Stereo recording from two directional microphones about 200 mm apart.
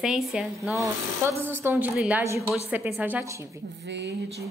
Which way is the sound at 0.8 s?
15° right (ahead or behind).